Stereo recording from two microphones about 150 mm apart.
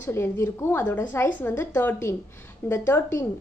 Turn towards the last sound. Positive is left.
turn(degrees=15)  # may be behind; listen again after turning